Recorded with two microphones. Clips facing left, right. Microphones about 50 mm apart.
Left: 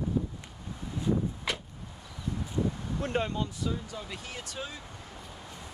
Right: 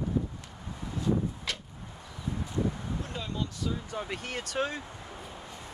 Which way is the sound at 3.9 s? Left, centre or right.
Right.